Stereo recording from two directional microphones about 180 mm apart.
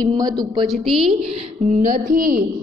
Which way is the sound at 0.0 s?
20° right (ahead or behind).